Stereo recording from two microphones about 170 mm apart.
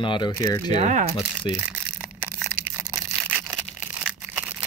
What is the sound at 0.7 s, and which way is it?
Speech, 45° right (ahead or behind).